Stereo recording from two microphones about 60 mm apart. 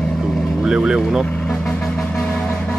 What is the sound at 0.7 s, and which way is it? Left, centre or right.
Speech, centre.